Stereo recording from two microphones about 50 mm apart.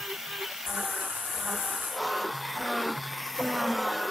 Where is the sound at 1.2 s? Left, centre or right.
Centre.